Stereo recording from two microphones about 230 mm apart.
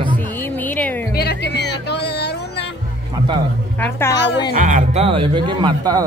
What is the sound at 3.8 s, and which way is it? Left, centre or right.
Speech, centre.